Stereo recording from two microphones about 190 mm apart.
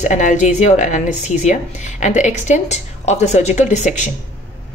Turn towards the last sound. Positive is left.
turn(degrees=40)  # may be behind; listen again after turning